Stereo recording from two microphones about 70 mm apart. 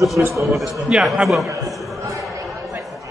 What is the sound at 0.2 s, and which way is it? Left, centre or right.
Speech, right.